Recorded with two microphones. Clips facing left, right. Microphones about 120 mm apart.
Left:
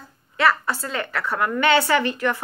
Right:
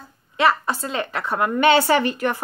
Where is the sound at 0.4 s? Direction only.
20° right (ahead or behind).